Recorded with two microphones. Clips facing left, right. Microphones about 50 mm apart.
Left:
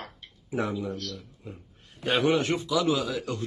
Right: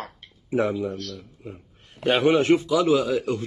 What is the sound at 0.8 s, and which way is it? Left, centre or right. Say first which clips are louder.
Speech: right 3 dB; right.